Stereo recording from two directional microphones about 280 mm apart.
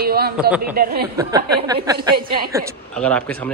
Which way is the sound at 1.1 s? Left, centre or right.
Centre.